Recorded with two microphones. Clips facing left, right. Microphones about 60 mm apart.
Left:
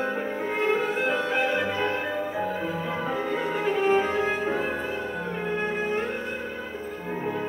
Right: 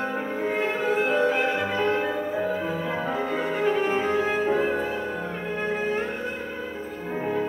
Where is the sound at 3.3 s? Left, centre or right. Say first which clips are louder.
Right 1 dB; right.